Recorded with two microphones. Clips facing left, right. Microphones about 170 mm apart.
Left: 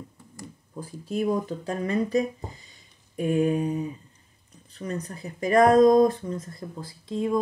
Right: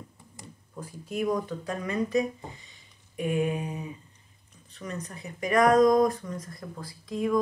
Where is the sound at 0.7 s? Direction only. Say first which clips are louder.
Left 3 dB; 30° left (ahead or behind).